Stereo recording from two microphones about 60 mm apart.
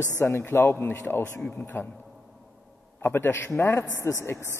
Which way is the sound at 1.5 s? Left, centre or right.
Left.